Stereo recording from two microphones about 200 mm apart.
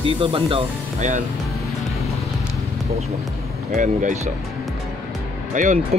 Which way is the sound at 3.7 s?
40° right (ahead or behind).